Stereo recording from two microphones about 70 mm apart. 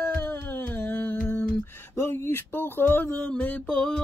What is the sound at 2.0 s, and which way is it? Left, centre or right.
Speech, left.